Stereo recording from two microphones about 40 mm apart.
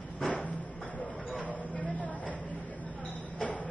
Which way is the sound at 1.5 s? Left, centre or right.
Left.